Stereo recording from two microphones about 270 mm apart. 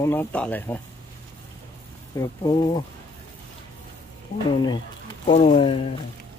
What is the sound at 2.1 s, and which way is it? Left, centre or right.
Speech, centre.